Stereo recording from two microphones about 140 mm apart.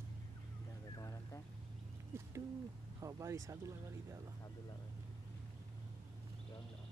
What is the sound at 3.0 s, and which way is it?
Speech, 25° right (ahead or behind).